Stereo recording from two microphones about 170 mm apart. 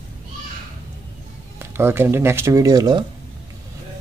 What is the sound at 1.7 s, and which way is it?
Speech, 15° right (ahead or behind).